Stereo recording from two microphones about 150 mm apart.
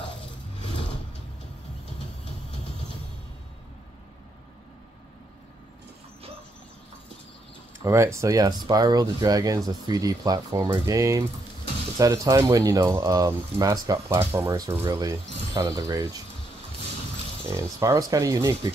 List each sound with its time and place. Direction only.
7.8 s speech: 20° right (ahead or behind)
17.5 s speech: 20° right (ahead or behind)